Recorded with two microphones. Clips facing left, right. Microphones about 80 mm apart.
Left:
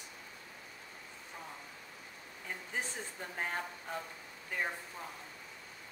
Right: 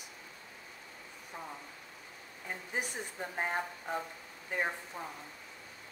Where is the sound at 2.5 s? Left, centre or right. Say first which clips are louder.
Right 2 dB; centre.